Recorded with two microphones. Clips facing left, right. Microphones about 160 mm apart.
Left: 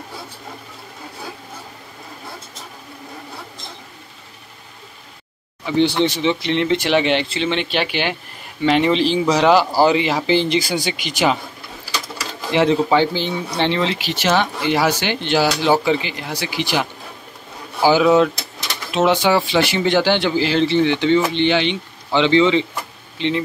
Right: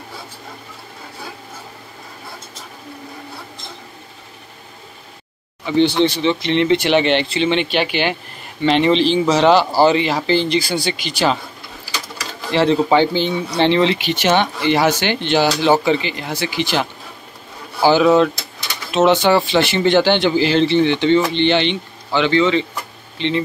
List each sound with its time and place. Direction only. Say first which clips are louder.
5.8 s speech: right 2 dB; 10° left (ahead or behind)
12.4 s speech: right 1 dB; 15° left (ahead or behind)
17.8 s speech: right 1 dB; 5° left (ahead or behind)
22.1 s speech: left 1 dB; 25° left (ahead or behind)